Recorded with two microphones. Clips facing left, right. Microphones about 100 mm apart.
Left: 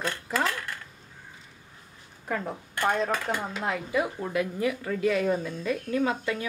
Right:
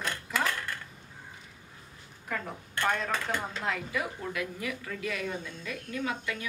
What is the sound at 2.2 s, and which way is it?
A woman's voice, 25° left (ahead or behind).